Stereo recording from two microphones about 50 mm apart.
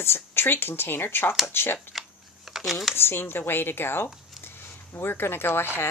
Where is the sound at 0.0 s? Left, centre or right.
Left.